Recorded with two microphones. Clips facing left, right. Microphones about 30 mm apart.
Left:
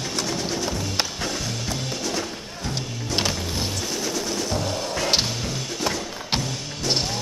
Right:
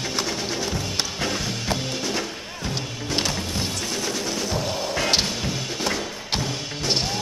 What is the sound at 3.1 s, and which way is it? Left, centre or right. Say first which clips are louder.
Music: left 1 dB; centre.